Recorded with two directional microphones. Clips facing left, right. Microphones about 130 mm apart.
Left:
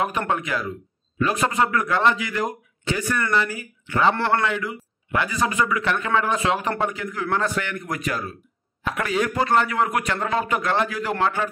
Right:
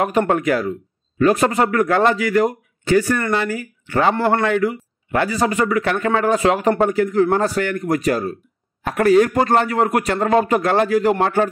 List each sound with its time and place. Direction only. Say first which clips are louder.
0.3 s a man's voice: right 7 dB; 45° right (ahead or behind)